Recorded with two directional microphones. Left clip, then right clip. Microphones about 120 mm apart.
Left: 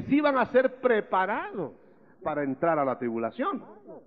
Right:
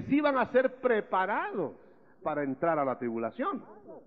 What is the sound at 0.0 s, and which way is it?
A man's voice, 25° left (ahead or behind).